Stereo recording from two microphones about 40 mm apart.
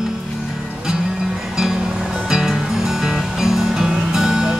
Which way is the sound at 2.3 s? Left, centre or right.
Centre.